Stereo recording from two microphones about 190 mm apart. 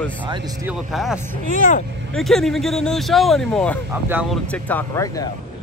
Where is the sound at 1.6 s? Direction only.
40° left (ahead or behind).